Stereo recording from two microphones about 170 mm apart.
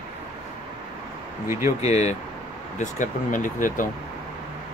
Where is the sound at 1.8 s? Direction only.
40° left (ahead or behind).